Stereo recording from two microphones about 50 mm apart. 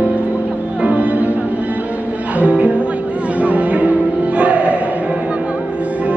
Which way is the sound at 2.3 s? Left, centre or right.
Right.